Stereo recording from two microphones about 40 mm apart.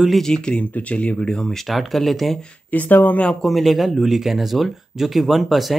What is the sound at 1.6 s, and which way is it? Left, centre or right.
Speech, centre.